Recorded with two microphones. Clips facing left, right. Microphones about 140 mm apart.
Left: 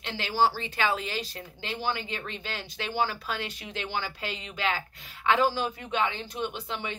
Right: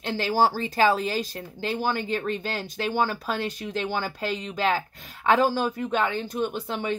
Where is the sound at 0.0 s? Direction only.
45° right (ahead or behind).